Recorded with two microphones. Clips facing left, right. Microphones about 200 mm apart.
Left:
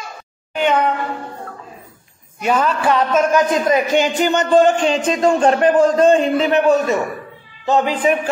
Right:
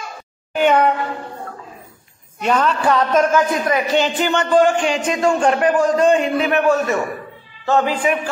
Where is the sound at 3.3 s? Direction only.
20° left (ahead or behind).